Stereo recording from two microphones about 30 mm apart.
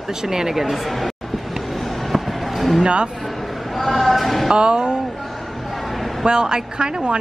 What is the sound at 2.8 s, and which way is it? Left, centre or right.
Speech, right.